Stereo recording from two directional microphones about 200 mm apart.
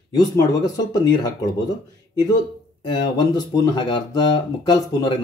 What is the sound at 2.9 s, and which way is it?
Speech, 20° left (ahead or behind).